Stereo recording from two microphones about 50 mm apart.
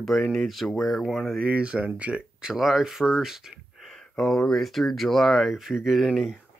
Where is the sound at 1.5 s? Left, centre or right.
Right.